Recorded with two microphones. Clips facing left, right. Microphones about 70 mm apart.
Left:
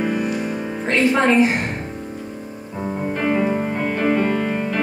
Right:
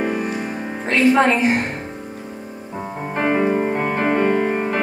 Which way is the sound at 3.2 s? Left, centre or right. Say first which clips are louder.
Right 3 dB; right.